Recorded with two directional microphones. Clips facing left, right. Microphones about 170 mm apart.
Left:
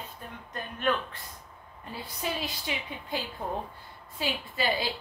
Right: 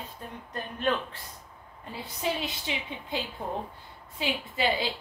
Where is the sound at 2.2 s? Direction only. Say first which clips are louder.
Right 3 dB; 20° right (ahead or behind).